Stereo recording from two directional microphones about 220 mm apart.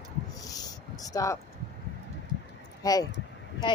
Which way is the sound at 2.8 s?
15° left (ahead or behind).